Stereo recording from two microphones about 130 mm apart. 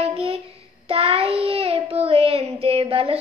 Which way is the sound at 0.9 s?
45° right (ahead or behind).